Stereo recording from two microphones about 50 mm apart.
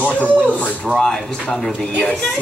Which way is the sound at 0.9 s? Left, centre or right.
Centre.